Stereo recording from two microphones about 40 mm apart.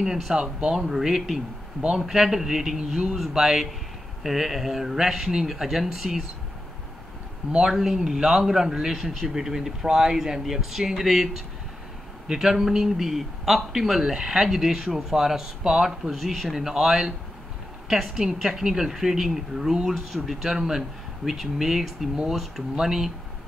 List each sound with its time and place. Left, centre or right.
0.3 s speech: centre
7.6 s speech: centre
8.9 s speech: centre
9.3 s speech: centre
20.5 s speech: centre